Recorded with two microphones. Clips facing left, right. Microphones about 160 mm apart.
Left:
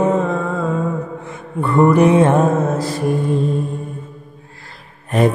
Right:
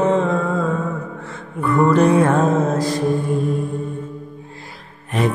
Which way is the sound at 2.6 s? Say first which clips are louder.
Even; 5° left (ahead or behind).